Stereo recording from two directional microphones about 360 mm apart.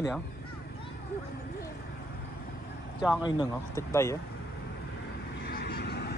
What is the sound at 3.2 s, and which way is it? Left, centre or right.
Speech, centre.